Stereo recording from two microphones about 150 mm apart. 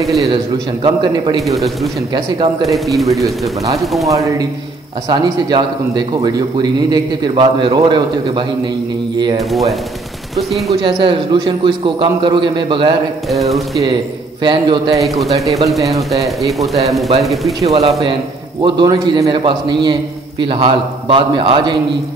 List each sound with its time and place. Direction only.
0.0 s speech: centre (ahead or behind)
0.8 s a man's voice: 35° right (ahead or behind)
1.4 s speech: centre (ahead or behind)
4.1 s speech: 20° right (ahead or behind)
9.4 s speech: centre (ahead or behind)
10.7 s a man's voice: 35° right (ahead or behind)
13.3 s speech: centre (ahead or behind)
14.4 s a man's voice: 30° right (ahead or behind)
16.0 s speech: centre (ahead or behind)
17.6 s speech: 45° right (ahead or behind)
18.6 s a man's voice: 30° right (ahead or behind)